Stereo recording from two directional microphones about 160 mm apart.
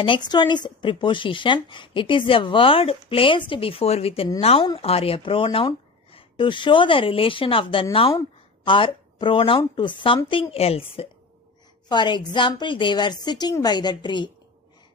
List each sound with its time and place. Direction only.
0.0 s a woman's voice: 30° left (ahead or behind)